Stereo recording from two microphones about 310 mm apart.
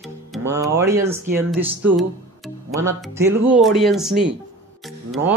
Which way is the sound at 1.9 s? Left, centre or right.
Centre.